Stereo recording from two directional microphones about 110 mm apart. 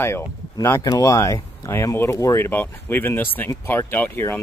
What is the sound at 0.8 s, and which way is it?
Speech, 35° left (ahead or behind).